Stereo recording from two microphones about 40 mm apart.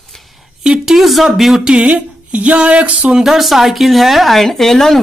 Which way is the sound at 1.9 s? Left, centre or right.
Right.